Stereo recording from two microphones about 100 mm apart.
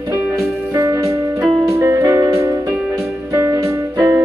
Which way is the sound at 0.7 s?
35° right (ahead or behind).